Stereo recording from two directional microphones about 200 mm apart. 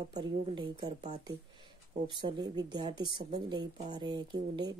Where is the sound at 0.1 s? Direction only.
20° right (ahead or behind).